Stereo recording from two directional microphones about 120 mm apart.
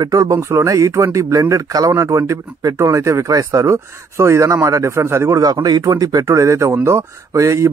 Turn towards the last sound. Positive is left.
turn(degrees=-25)  # may be behind; listen again after turning